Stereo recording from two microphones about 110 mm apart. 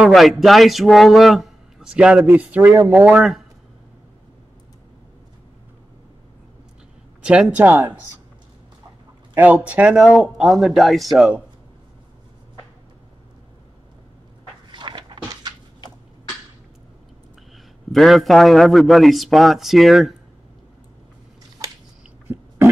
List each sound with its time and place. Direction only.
0.0 s a man's voice: centre (ahead or behind)
7.2 s speech: 10° right (ahead or behind)
9.3 s speech: 15° right (ahead or behind)
14.7 s cupboard open or close: 45° right (ahead or behind)
17.9 s a man's voice: centre (ahead or behind)